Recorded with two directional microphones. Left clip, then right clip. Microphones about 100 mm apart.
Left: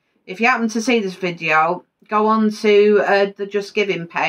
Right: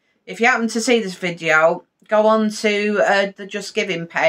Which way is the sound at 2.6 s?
35° right (ahead or behind).